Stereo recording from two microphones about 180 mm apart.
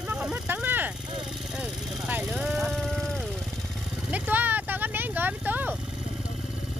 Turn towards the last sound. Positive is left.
turn(degrees=-10)  # may be behind; listen again after turning